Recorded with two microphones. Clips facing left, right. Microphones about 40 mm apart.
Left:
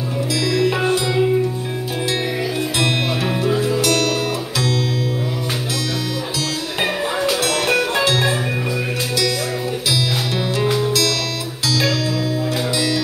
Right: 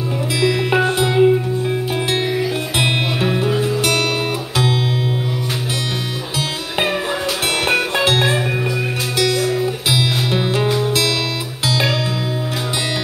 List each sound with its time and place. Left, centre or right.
0.4 s music: right
3.3 s music: centre
8.0 s music: right
10.3 s music: right